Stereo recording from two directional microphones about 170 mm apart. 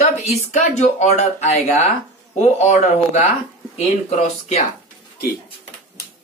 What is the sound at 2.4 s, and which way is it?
Speech, 40° left (ahead or behind).